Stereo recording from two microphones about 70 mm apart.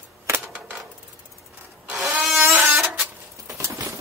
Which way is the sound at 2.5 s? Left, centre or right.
Right.